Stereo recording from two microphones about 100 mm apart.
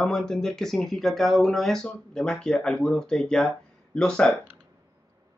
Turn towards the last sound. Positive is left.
turn(degrees=10)  # may be behind; listen again after turning